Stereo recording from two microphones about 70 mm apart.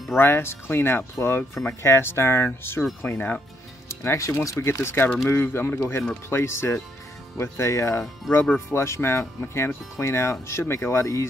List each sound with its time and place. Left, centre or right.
0.2 s speech: left